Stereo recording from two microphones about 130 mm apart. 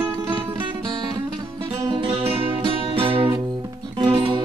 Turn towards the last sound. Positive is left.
turn(degrees=-40)  # may be behind; listen again after turning